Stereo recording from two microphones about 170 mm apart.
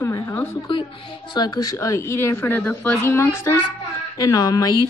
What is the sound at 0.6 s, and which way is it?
A woman's voice, 30° left (ahead or behind).